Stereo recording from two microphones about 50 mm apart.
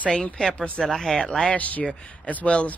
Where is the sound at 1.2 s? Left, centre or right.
Centre.